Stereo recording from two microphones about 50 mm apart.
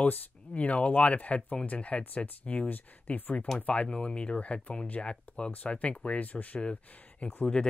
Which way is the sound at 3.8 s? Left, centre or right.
Centre.